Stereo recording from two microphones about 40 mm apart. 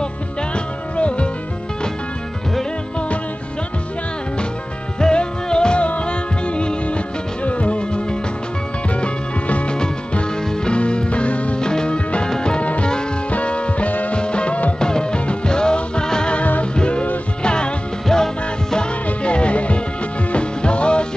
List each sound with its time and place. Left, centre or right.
0.9 s music: left
5.0 s music: left
11.6 s music: left
14.1 s music: left
14.8 s music: centre
16.3 s music: left
16.7 s music: left
18.0 s music: centre
19.0 s music: left